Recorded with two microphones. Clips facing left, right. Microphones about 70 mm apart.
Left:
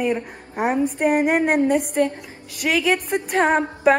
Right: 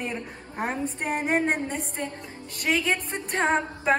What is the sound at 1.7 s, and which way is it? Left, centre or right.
A woman's voice, left.